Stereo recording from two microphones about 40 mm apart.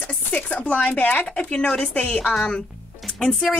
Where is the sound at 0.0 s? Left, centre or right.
Left.